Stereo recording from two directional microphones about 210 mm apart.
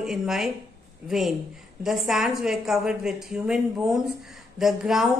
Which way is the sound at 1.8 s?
Centre (ahead or behind).